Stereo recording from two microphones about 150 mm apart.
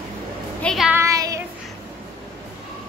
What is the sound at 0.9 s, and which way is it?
Child singing, 20° right (ahead or behind).